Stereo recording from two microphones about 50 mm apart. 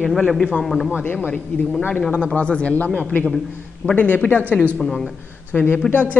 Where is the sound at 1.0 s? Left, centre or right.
Left.